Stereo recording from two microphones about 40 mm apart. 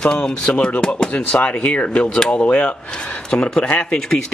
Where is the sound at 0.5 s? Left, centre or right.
Left.